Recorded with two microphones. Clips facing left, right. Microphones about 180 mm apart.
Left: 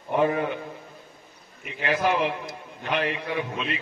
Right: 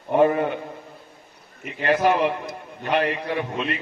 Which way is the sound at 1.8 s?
55° right (ahead or behind).